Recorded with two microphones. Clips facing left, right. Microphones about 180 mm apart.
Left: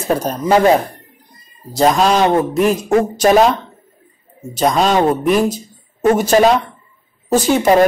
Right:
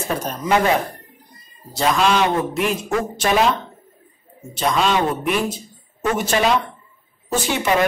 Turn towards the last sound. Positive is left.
turn(degrees=40)  # may be behind; listen again after turning